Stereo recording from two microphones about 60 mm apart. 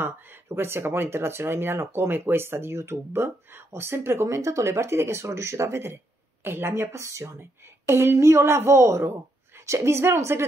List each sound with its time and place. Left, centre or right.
0.0 s speech: right
7.3 s speech: right